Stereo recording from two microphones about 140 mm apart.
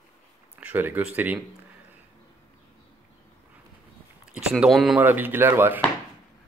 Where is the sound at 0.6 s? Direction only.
15° right (ahead or behind).